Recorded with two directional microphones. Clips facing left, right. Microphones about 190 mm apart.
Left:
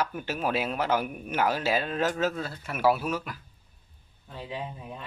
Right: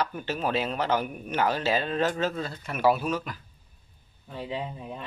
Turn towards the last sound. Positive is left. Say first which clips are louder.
# right 3 dB
turn(degrees=-20)  # may be behind; listen again after turning